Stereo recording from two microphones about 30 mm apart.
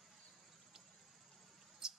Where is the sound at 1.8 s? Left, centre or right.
Right.